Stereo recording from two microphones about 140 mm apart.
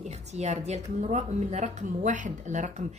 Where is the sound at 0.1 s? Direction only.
55° right (ahead or behind).